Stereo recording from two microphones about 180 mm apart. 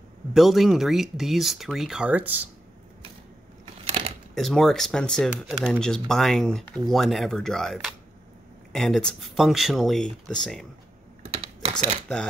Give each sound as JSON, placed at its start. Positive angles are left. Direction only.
{"t": 0.3, "sound": "speech", "side_deg": 0}
{"t": 3.8, "sound": "a sound", "side_deg": -35}
{"t": 4.4, "sound": "speech", "side_deg": 0}
{"t": 11.2, "sound": "typing", "side_deg": -30}